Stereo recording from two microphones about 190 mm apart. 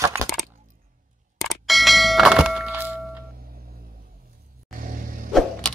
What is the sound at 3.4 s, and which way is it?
Telephone dialing, 50° right (ahead or behind).